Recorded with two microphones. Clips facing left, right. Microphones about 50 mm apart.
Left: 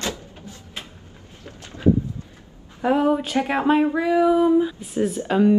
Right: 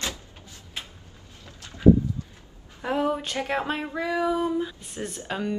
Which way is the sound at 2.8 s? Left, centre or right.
Centre.